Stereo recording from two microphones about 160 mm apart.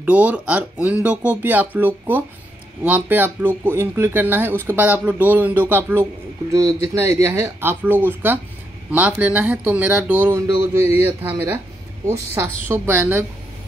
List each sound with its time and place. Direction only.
0.0 s speech: 10° right (ahead or behind)